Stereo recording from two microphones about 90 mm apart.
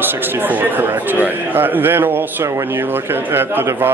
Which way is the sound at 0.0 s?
20° right (ahead or behind).